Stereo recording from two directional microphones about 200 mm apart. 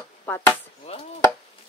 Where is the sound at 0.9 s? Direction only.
30° left (ahead or behind).